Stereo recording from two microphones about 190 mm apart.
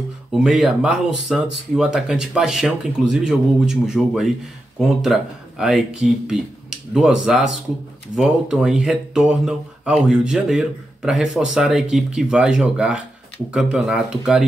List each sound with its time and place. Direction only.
0.3 s speech: 5° right (ahead or behind)